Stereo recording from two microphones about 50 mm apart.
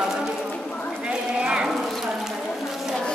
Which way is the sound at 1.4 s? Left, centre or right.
Right.